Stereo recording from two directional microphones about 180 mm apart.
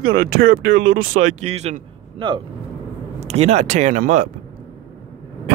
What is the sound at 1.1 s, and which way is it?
Speech, 40° right (ahead or behind).